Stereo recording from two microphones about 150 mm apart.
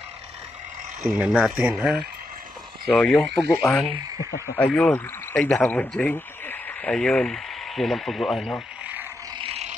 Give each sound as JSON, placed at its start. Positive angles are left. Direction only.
{"t": 1.0, "sound": "speech", "side_deg": 0}
{"t": 2.9, "sound": "speech", "side_deg": 5}
{"t": 9.4, "sound": "vehicle", "side_deg": -45}